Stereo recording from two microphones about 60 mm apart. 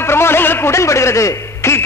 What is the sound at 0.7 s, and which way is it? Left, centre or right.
A man's voice, left.